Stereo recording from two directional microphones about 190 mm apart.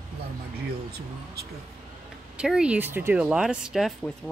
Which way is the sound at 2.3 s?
5° right (ahead or behind).